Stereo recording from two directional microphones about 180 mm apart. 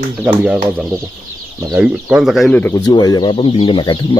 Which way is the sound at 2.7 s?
20° left (ahead or behind).